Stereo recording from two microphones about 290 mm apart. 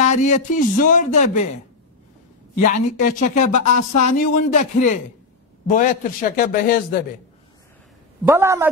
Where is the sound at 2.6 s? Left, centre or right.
Left.